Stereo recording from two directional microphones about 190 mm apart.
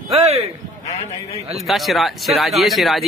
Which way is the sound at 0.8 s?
35° left (ahead or behind).